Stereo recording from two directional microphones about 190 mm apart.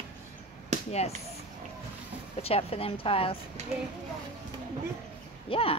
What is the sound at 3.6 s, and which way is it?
Speech, 35° right (ahead or behind).